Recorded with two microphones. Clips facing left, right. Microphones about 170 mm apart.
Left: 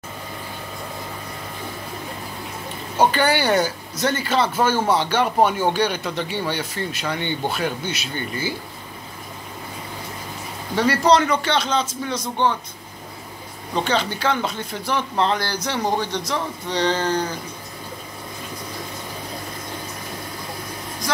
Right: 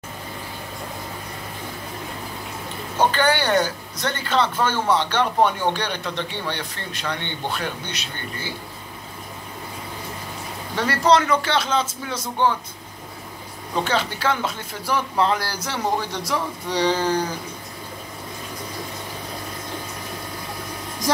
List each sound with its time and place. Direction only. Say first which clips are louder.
3.0 s speech: left 1 dB; 10° left (ahead or behind)
10.8 s speech: left 2 dB; centre (ahead or behind)
13.7 s speech: left 1 dB; 5° right (ahead or behind)